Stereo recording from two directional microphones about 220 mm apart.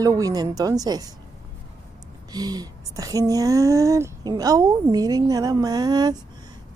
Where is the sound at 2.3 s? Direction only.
15° right (ahead or behind).